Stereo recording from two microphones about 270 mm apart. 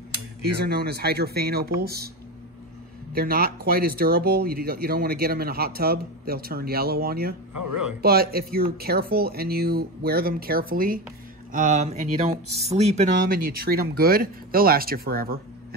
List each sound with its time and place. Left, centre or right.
0.6 s speech: right
3.1 s speech: right